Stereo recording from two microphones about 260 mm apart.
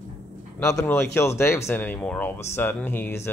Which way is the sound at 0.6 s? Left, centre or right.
Centre.